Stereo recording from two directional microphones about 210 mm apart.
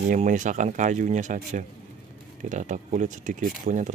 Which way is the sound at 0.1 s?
35° right (ahead or behind).